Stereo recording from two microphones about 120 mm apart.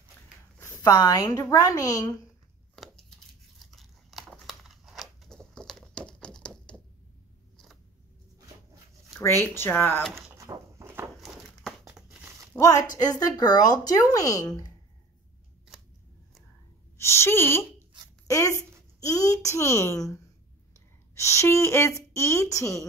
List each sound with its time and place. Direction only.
0.8 s speech: 30° left (ahead or behind)
3.5 s crumpling: centre (ahead or behind)
9.2 s a woman's voice: 20° left (ahead or behind)
10.3 s a sound: 25° right (ahead or behind)
11.9 s crumpling: 10° right (ahead or behind)
12.5 s speech: 25° left (ahead or behind)
17.0 s a woman's voice: 20° left (ahead or behind)